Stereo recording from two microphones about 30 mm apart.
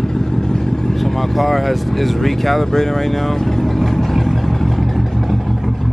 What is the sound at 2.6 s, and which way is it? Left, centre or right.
Vehicle, centre.